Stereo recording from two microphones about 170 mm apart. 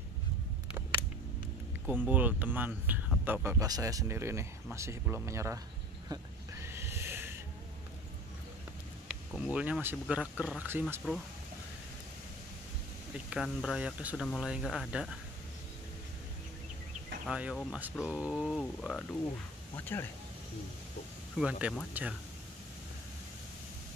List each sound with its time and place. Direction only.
1.9 s speech: 10° right (ahead or behind)
6.0 s a sound: 15° right (ahead or behind)
9.0 s speech: 5° right (ahead or behind)
13.3 s speech: centre (ahead or behind)
17.3 s speech: 5° right (ahead or behind); by 20.1 s 10° left (ahead or behind)
21.4 s speech: 5° right (ahead or behind)